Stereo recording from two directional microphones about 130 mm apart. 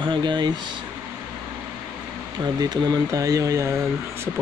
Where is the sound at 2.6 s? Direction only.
25° right (ahead or behind).